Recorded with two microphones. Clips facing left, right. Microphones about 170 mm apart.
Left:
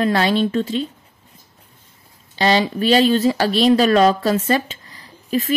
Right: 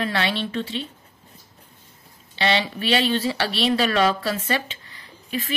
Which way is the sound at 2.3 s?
40° left (ahead or behind).